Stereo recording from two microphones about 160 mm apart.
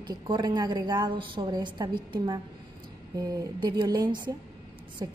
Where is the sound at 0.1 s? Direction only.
25° right (ahead or behind).